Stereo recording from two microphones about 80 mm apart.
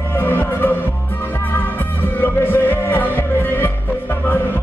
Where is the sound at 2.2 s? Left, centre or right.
Left.